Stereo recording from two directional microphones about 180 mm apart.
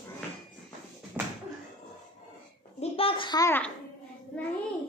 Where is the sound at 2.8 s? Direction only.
30° left (ahead or behind).